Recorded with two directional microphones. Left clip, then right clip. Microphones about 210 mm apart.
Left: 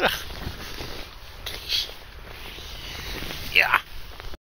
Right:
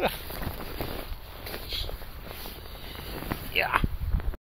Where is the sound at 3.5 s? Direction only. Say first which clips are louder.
Left 7 dB; 5° right (ahead or behind).